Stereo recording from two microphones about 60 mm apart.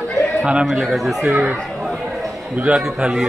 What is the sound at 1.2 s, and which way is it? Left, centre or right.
Speech, right.